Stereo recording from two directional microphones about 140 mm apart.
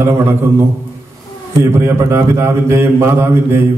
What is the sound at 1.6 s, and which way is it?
A man's voice, 20° right (ahead or behind).